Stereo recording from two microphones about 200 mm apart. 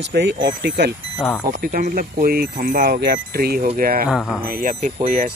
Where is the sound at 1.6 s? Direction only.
45° right (ahead or behind).